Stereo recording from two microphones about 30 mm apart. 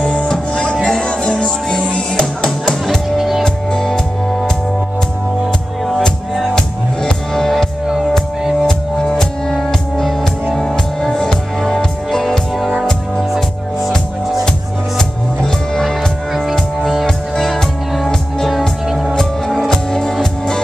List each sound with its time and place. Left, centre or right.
0.0 s music: left
3.2 s music: centre
3.4 s music: left
6.3 s music: centre
7.0 s music: centre
8.6 s music: left
9.2 s music: centre
15.0 s music: centre
19.5 s music: centre